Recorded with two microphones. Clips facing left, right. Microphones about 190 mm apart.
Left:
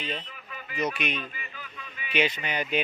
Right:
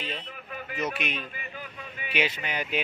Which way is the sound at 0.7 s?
5° right (ahead or behind).